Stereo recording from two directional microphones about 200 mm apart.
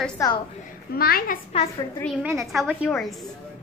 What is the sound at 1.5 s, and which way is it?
Speech, 30° left (ahead or behind).